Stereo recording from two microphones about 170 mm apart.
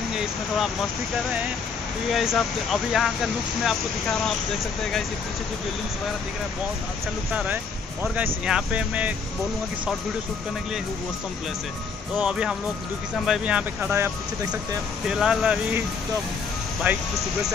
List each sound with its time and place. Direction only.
2.0 s speech: centre (ahead or behind)
7.3 s speech: 10° right (ahead or behind)
12.2 s speech: 5° right (ahead or behind)
16.8 s speech: 10° right (ahead or behind)